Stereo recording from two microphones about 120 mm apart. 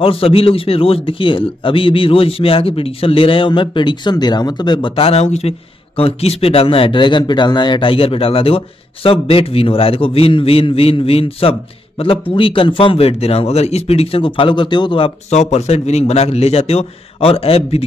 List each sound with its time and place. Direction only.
0.0 s speech: 50° left (ahead or behind)
4.9 s a man's voice: 55° left (ahead or behind)
5.9 s speech: 55° left (ahead or behind)
15.3 s a man's voice: 70° left (ahead or behind)